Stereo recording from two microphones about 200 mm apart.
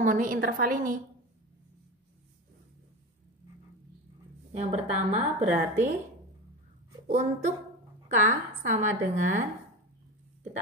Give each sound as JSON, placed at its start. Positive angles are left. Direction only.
{"t": 0.0, "sound": "a woman's voice", "side_deg": -40}
{"t": 4.5, "sound": "a woman's voice", "side_deg": -35}
{"t": 7.1, "sound": "a woman's voice", "side_deg": -35}